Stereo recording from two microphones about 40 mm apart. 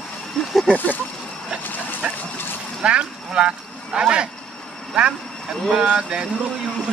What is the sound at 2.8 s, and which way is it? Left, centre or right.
Speech, right.